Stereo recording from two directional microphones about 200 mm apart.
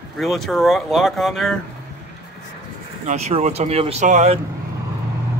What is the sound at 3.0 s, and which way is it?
Speech, 35° right (ahead or behind).